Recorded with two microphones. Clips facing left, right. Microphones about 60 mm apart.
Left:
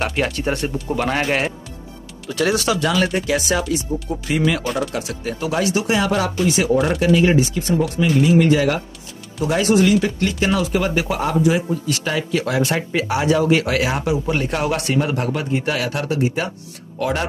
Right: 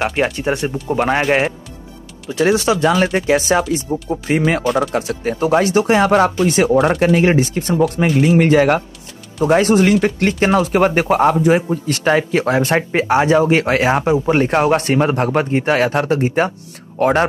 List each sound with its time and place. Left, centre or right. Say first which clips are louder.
0.0 s speech: right 3 dB; centre; by 4.4 s right
4.6 s speech: right 6 dB; centre
4.9 s speech: right 6 dB; right
6.9 s speech: right 2 dB; right